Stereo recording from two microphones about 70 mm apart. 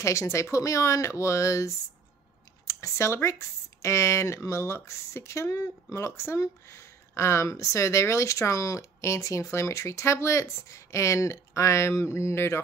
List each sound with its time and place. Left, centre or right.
0.0 s speech: left